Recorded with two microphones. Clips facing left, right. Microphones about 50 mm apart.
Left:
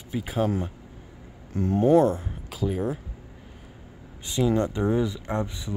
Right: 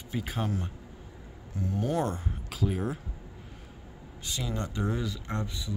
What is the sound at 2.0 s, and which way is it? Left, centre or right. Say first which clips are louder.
Speech: left 8 dB; centre.